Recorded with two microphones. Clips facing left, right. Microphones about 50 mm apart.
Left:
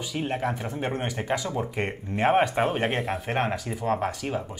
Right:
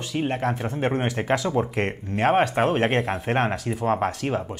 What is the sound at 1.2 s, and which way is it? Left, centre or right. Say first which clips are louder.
Speech: right 4 dB; right.